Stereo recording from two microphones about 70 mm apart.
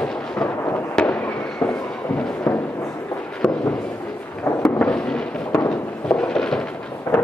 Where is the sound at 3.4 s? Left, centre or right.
Centre.